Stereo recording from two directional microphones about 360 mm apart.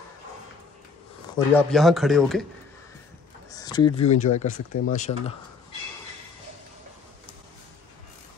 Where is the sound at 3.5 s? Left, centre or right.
Centre.